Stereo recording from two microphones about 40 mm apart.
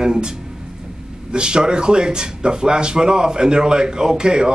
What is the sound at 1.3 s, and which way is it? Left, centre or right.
Speech, right.